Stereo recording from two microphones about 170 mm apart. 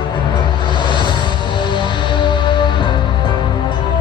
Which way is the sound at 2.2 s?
30° left (ahead or behind).